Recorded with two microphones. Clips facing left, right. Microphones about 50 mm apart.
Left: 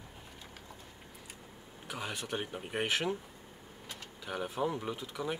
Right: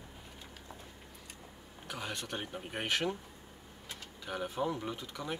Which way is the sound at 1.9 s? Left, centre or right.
Centre.